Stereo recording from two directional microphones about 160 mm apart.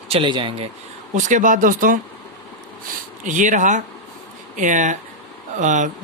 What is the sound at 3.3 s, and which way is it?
Speech, 50° right (ahead or behind).